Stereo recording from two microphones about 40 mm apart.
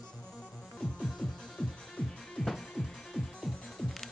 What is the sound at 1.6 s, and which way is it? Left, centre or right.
Music, centre.